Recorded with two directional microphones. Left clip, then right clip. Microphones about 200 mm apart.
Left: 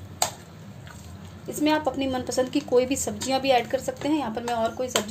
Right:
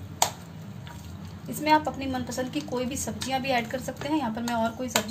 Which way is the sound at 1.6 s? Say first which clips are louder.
Even; 40° left (ahead or behind).